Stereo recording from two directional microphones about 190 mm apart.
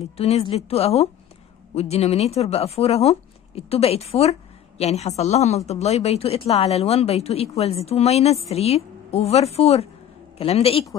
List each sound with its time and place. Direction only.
0.2 s a man's voice: 30° left (ahead or behind)